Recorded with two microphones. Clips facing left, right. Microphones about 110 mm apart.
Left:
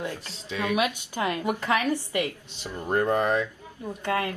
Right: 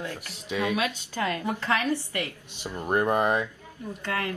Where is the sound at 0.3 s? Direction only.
15° right (ahead or behind).